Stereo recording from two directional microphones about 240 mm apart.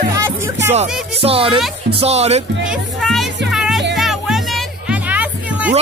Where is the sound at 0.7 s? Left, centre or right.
Right.